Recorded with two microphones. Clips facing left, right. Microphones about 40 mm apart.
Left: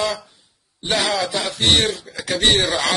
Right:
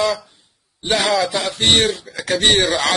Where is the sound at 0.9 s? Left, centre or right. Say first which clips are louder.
Right 3 dB; right.